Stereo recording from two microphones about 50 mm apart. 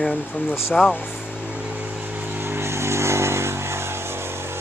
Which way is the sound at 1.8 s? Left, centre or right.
Right.